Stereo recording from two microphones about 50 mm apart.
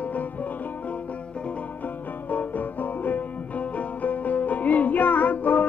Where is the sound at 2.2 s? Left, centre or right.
Left.